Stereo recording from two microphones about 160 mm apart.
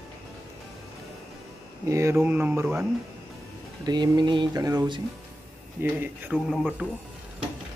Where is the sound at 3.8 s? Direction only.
25° right (ahead or behind).